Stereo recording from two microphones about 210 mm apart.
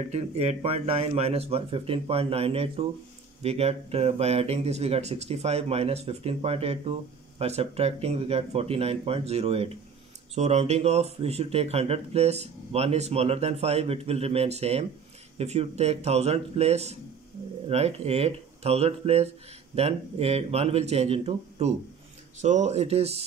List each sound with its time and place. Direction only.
0.1 s a man's voice: 30° right (ahead or behind)